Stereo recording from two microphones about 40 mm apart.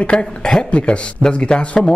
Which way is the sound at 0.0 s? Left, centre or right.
Left.